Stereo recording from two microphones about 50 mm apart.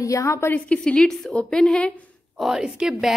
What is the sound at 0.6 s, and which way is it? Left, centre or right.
A woman's voice, centre.